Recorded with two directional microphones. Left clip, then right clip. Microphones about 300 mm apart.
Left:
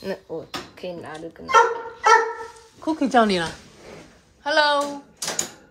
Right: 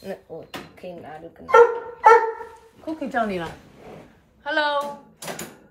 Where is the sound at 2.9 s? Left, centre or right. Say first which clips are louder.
Left 6 dB; centre.